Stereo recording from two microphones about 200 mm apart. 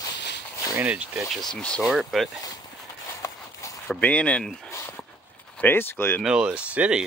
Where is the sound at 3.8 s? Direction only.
5° left (ahead or behind).